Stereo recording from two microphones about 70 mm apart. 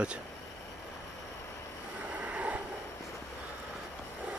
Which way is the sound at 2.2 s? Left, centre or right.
Right.